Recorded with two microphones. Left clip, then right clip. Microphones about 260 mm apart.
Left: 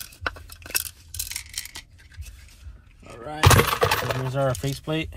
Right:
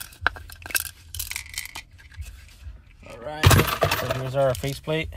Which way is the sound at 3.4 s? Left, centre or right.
Left.